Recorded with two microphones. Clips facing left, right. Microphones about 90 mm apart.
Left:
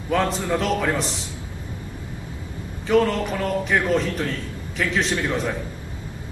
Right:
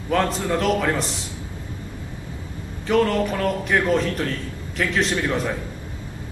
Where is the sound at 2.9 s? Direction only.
Centre (ahead or behind).